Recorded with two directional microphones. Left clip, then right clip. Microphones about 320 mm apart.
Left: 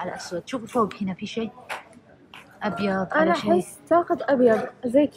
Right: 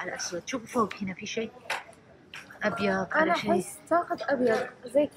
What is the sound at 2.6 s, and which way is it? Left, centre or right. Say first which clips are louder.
Speech: left 2 dB; centre.